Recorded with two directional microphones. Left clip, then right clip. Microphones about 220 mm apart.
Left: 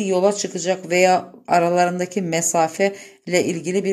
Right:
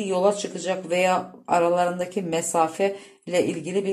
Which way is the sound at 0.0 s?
40° left (ahead or behind).